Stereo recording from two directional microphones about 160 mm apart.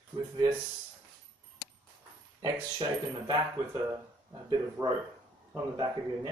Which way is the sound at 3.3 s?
25° right (ahead or behind).